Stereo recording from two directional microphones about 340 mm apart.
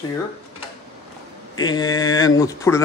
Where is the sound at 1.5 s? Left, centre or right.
Centre.